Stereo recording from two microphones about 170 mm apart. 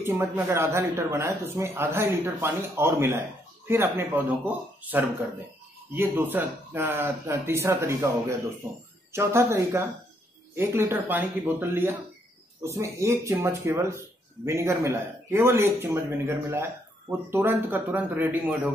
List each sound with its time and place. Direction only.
0.0 s speech: 15° right (ahead or behind)
9.1 s speech: 15° right (ahead or behind)